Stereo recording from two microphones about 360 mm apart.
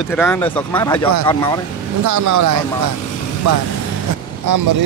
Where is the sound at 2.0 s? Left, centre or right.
Right.